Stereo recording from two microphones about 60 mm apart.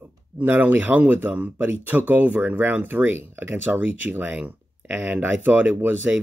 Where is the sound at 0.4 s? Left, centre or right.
Right.